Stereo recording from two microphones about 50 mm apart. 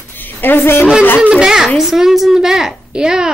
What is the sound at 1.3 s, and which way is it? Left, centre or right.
A woman's voice, centre.